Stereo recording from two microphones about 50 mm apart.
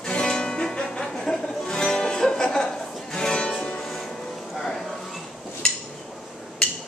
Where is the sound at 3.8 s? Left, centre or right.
Centre.